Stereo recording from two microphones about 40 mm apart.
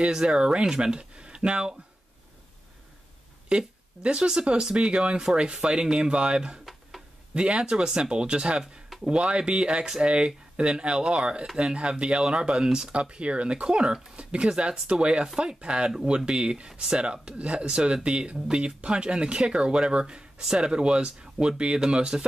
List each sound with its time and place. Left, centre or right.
0.0 s speech: right
3.4 s speech: right
12.9 s speech: right